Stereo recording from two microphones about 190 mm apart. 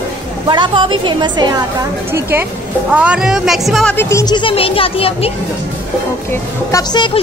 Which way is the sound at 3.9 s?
20° left (ahead or behind).